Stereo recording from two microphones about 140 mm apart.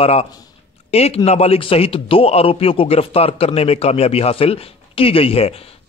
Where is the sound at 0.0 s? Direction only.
45° left (ahead or behind).